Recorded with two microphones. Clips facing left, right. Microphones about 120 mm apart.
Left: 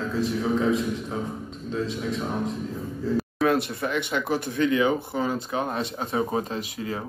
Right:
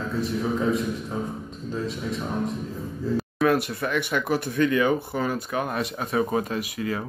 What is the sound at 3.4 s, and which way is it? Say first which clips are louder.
Speech: right 1 dB; 25° left (ahead or behind).